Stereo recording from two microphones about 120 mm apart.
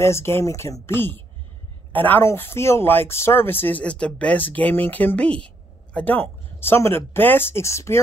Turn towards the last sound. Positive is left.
turn(degrees=25)  # may be behind; listen again after turning